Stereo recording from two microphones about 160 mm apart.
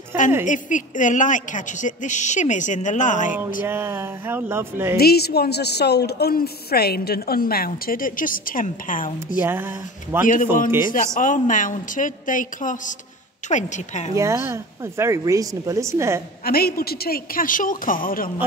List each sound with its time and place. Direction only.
0.1 s speech: 15° right (ahead or behind)
0.5 s a woman's voice: 55° left (ahead or behind)
3.6 s speech: 15° right (ahead or behind)
4.9 s a woman's voice: 80° left; by 9.4 s 55° left (ahead or behind)
9.4 s speech: 15° right (ahead or behind)
10.2 s a woman's voice: 55° left (ahead or behind)
14.1 s speech: 20° right (ahead or behind)
16.4 s a woman's voice: 70° left (ahead or behind)